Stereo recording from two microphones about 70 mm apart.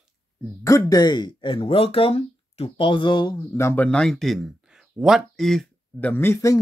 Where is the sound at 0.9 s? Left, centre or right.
Left.